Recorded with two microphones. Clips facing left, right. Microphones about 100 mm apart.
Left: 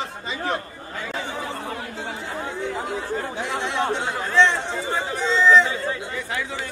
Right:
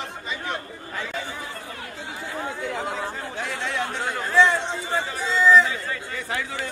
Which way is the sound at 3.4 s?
20° left (ahead or behind).